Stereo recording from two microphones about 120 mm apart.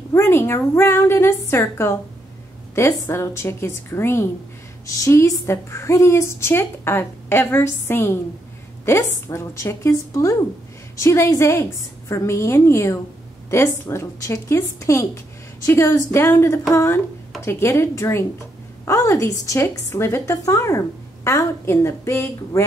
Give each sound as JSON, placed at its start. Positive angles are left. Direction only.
{"t": 0.1, "sound": "speech", "side_deg": 20}